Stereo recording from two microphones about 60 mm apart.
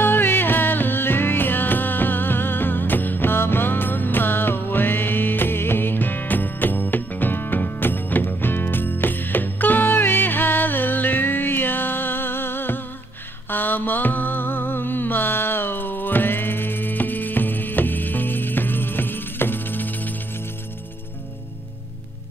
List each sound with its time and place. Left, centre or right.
0.0 s music: left
13.5 s mantra: left